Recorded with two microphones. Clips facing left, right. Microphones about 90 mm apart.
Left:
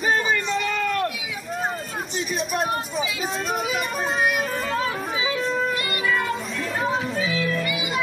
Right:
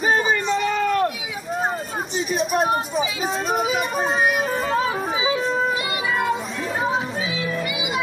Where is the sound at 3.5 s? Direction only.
Centre (ahead or behind).